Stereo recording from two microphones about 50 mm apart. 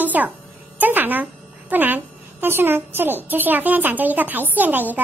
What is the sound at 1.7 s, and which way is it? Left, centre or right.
A child's voice, right.